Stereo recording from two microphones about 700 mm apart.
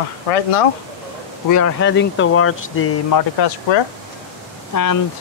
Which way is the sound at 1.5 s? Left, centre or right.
Left.